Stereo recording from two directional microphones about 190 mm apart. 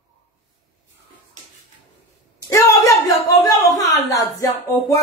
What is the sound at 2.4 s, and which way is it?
A woman's voice, 15° left (ahead or behind).